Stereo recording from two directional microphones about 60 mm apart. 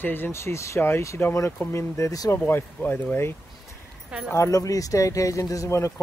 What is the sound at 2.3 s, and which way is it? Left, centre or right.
Speech, left.